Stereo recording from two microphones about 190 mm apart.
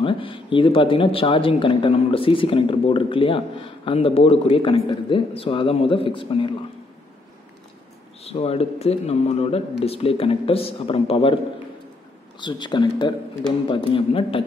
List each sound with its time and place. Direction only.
0.0 s speech: 25° left (ahead or behind)
8.2 s speech: 30° left (ahead or behind)
12.4 s speech: 25° left (ahead or behind)